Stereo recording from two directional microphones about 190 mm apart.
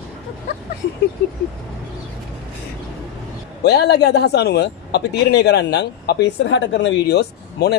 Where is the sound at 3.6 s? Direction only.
60° left (ahead or behind).